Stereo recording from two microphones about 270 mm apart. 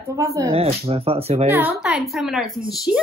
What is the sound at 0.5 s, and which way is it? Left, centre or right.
Speech, right.